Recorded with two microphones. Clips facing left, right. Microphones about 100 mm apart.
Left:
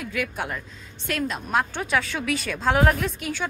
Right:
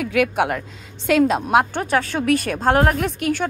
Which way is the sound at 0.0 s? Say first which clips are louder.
Right 10 dB; 75° right (ahead or behind).